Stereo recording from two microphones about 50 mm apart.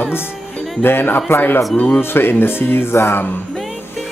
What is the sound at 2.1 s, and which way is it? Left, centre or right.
A woman's voice, left.